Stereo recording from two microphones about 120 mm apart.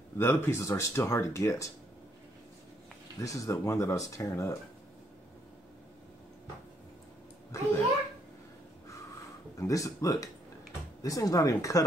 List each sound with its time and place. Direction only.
0.2 s speech: 20° left (ahead or behind)
3.2 s speech: 25° left (ahead or behind)
7.5 s speech: 25° left (ahead or behind)
9.6 s speech: 25° left (ahead or behind)